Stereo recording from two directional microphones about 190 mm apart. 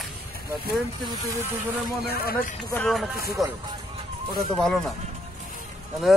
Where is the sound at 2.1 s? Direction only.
55° left (ahead or behind).